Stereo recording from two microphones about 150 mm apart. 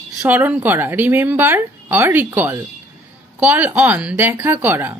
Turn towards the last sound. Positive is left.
turn(degrees=-15)  # may be behind; listen again after turning